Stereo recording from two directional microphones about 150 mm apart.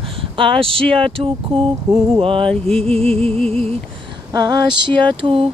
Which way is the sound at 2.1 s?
35° right (ahead or behind).